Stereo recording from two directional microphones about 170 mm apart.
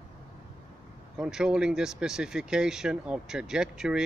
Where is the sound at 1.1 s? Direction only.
5° right (ahead or behind).